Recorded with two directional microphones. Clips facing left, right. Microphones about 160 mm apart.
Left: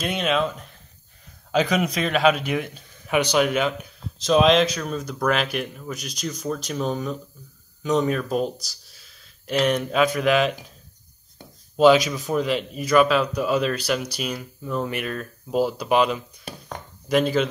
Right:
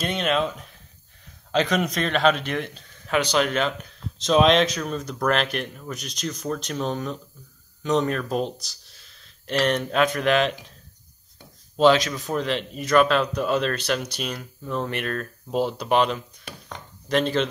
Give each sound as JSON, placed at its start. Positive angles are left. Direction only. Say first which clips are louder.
{"t": 0.0, "sound": "speech", "louder": "left 1 dB", "side_deg": 0}
{"t": 11.7, "sound": "speech", "louder": "left 2 dB", "side_deg": 10}
{"t": 16.4, "sound": "chopping", "louder": "left 3 dB", "side_deg": 40}
{"t": 17.1, "sound": "speech", "louder": "left 2 dB", "side_deg": 5}